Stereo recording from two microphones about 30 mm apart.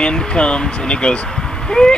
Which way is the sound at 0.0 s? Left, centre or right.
Left.